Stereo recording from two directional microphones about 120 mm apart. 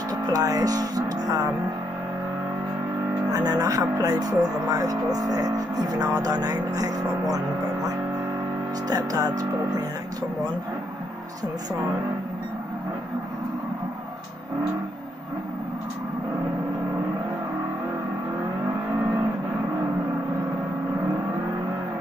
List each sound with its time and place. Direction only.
0.1 s speech: 30° right (ahead or behind)
3.3 s speech: 30° right (ahead or behind)
8.8 s speech: 30° right (ahead or behind)